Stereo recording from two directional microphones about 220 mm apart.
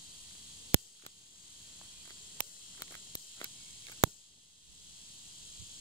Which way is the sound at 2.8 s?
20° left (ahead or behind).